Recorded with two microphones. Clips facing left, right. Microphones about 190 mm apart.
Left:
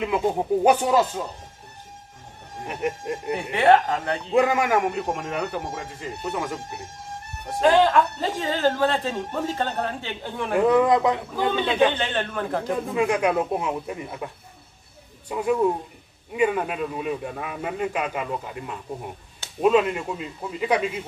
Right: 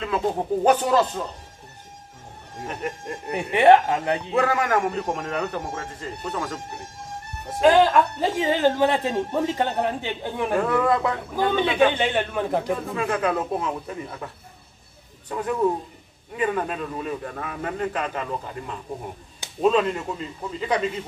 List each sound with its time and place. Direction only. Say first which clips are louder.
0.0 s a man's voice: left 1 dB; 15° left (ahead or behind)
2.6 s a man's voice: left 3 dB; 15° left (ahead or behind)
3.5 s speech: right 3 dB; 15° right (ahead or behind)
4.3 s a man's voice: left 4 dB; 15° left (ahead or behind)
7.6 s speech: right 1 dB; 10° right (ahead or behind)
10.5 s a man's voice: left 4 dB; 15° left (ahead or behind)
12.0 s speech: right 3 dB; 10° right (ahead or behind)
12.7 s a man's voice: left 3 dB; 15° left (ahead or behind)